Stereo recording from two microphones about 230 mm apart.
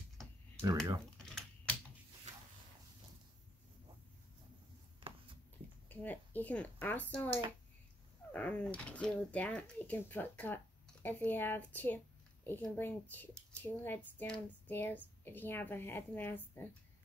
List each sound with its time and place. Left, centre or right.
1.1 s typing: centre
2.3 s a sound: right
5.9 s speech: centre
8.3 s speech: centre